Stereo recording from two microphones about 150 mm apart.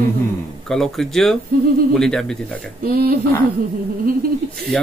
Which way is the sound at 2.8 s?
90° right.